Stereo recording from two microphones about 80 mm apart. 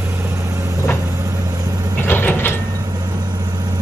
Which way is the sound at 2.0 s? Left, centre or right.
Left.